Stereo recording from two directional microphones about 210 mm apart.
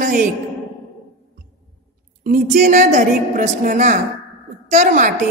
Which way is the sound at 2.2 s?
35° right (ahead or behind).